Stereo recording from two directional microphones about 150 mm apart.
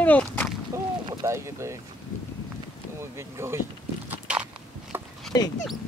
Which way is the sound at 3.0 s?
15° right (ahead or behind).